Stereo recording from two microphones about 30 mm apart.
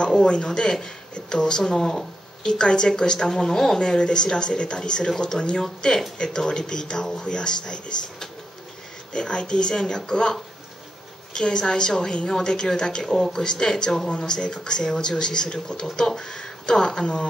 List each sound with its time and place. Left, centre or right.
0.5 s speech: centre
2.4 s speech: left
3.4 s speech: centre
3.8 s speech: left
11.3 s speech: left